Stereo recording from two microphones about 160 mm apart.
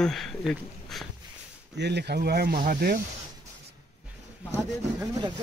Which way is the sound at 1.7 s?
90° right.